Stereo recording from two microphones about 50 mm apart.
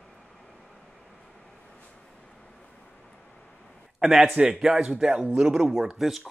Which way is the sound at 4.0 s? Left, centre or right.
Centre.